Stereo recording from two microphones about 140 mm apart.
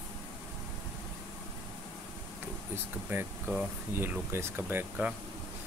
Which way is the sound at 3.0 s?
15° right (ahead or behind).